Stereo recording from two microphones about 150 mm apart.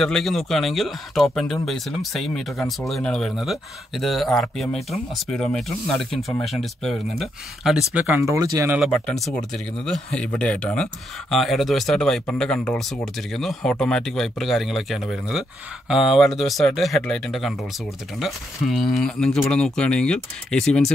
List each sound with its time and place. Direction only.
0.0 s speech: centre (ahead or behind)
8.2 s speech: 20° right (ahead or behind)
8.6 s speech: 5° right (ahead or behind)
8.9 s speech: 5° left (ahead or behind)